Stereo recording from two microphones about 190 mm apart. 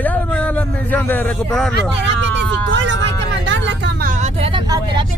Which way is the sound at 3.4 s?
70° right (ahead or behind).